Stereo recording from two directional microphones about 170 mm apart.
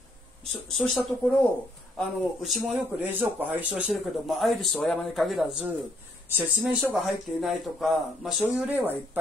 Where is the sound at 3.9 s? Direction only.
Centre (ahead or behind).